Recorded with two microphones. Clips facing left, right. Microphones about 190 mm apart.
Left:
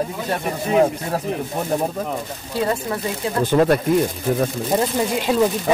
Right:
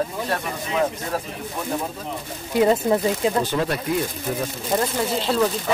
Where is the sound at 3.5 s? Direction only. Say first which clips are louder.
Left 7 dB; 50° left (ahead or behind).